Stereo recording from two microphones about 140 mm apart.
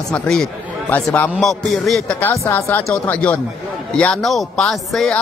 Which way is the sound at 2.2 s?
15° left (ahead or behind).